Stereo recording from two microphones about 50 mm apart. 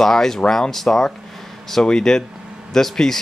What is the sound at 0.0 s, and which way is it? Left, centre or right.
Speech, centre.